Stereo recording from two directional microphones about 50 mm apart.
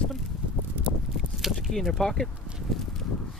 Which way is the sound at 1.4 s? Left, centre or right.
Centre.